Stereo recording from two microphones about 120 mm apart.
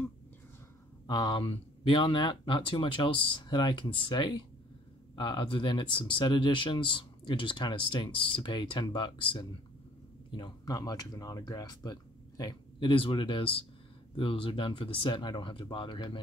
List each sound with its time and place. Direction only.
1.0 s speech: 35° left (ahead or behind)
12.9 s speech: 45° left (ahead or behind)